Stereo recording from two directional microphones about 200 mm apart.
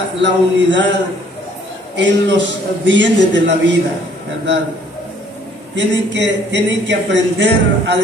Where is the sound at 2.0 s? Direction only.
65° right (ahead or behind).